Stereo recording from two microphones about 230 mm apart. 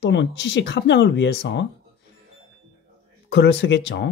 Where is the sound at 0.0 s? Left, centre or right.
Left.